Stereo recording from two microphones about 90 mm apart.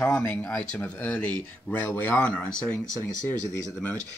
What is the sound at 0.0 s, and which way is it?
Speech, 20° left (ahead or behind).